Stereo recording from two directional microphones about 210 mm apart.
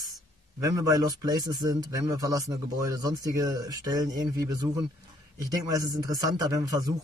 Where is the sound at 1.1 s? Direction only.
20° right (ahead or behind).